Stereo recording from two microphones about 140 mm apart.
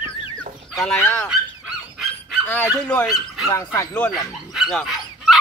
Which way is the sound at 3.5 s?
20° left (ahead or behind).